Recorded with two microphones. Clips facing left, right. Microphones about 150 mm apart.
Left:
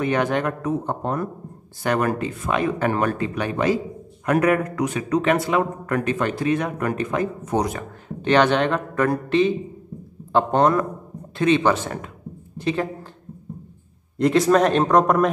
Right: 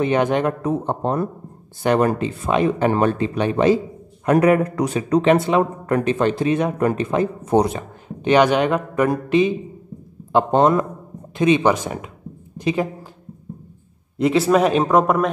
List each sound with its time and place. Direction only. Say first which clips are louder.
0.0 s speech: right 3 dB; 20° right (ahead or behind)
8.2 s speech: right 2 dB; 15° right (ahead or behind)
14.1 s a man's voice: right 1 dB; 5° right (ahead or behind)